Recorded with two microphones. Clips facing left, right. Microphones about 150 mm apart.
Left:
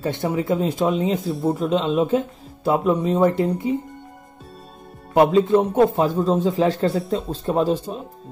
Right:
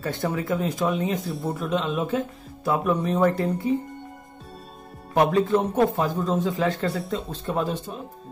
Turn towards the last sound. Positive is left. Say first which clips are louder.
# left 6 dB
turn(degrees=35)  # may be behind; listen again after turning